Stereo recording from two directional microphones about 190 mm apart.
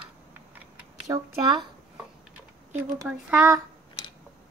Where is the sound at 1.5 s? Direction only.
5° right (ahead or behind).